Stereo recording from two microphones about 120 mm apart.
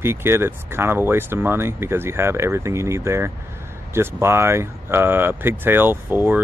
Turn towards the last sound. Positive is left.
turn(degrees=-15)  # may be behind; listen again after turning